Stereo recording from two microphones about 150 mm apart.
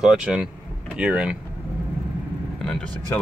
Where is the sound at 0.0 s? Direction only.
5° right (ahead or behind).